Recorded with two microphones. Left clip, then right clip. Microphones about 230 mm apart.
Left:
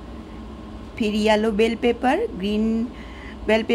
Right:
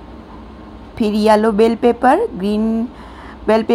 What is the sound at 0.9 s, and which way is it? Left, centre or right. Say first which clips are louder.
A woman's voice: right 7 dB; centre.